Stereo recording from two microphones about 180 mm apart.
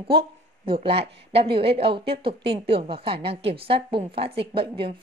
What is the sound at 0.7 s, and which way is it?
A woman's voice, 30° right (ahead or behind).